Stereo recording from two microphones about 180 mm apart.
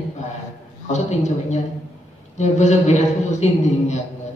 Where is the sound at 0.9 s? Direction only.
40° left (ahead or behind).